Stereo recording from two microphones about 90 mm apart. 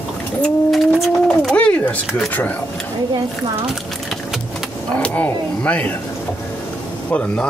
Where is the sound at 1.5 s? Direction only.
15° left (ahead or behind).